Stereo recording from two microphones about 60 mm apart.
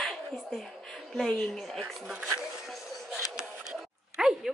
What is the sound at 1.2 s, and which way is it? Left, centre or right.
Speech, centre.